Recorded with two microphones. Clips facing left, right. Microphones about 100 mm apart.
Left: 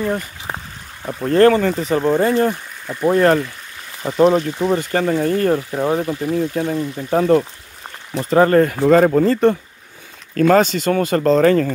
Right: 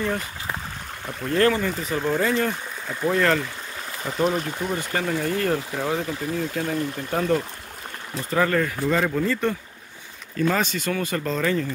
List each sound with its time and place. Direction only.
0.0 s a sound: 30° left (ahead or behind)
1.0 s speech: 40° left (ahead or behind)
1.8 s speech: 30° left (ahead or behind)
5.4 s speech: 30° left (ahead or behind)
8.1 s speech: 70° left (ahead or behind)
8.4 s speech: 40° left (ahead or behind)
10.3 s speech: 65° left (ahead or behind)